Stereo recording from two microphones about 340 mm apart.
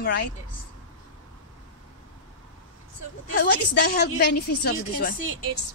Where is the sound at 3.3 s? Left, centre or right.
Left.